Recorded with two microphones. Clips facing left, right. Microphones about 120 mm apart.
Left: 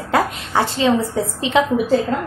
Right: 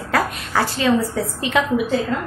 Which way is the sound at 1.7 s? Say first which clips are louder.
Left 3 dB; 40° left (ahead or behind).